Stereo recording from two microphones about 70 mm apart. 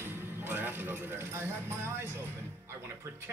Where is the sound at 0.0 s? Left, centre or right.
Right.